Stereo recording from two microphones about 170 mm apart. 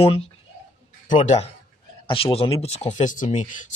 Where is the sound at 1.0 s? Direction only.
45° left (ahead or behind).